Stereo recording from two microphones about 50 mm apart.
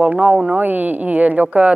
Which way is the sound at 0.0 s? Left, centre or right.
Right.